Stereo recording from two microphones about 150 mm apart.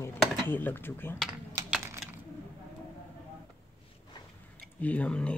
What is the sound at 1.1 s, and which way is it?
Typing, 5° right (ahead or behind).